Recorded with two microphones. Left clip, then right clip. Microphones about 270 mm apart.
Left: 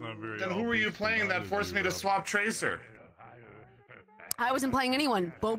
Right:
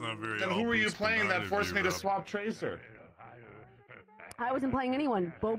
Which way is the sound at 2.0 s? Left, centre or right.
Left.